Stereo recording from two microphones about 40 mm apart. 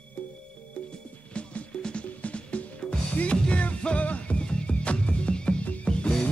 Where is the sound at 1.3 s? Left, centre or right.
Left.